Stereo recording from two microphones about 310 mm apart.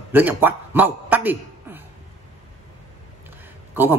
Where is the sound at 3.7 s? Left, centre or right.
Centre.